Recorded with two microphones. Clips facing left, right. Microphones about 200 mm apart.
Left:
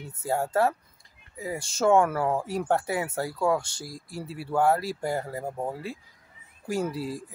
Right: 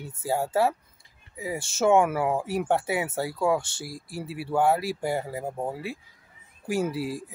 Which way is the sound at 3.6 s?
25° right (ahead or behind).